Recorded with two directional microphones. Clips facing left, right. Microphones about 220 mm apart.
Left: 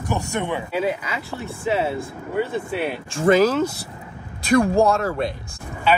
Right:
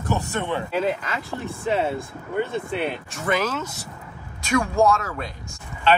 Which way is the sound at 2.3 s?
5° left (ahead or behind).